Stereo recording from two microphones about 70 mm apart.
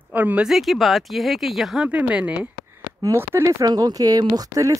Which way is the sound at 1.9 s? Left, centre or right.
Right.